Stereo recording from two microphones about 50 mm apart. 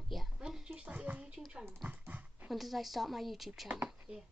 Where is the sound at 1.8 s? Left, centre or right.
Right.